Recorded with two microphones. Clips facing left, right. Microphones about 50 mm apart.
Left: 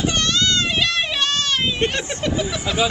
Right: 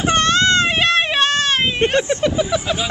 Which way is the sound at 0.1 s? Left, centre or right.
Right.